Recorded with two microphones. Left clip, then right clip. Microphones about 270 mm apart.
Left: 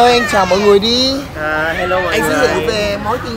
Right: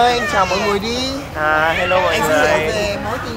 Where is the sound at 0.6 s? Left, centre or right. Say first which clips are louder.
Left 8 dB; left.